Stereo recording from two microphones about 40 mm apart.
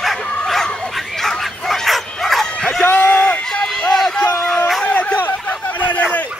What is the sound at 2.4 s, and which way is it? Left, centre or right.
Bow-wow, centre.